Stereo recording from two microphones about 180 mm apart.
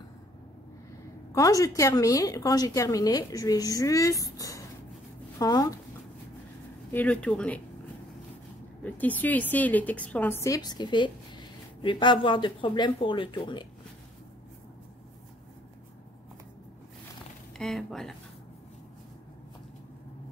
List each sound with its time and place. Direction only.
1.3 s a woman's voice: 20° left (ahead or behind)
6.9 s speech: 10° left (ahead or behind)
8.8 s a woman's voice: 10° left (ahead or behind); by 13.7 s 25° left (ahead or behind)
17.6 s speech: centre (ahead or behind)